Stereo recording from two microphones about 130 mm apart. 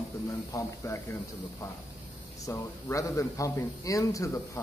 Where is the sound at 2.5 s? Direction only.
25° left (ahead or behind).